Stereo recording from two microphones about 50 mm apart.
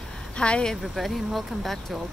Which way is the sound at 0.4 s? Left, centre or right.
Centre.